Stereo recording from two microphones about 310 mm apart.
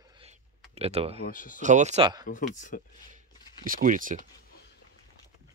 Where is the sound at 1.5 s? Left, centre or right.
Right.